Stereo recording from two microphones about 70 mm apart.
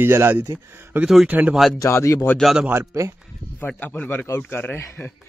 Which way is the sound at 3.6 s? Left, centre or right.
Left.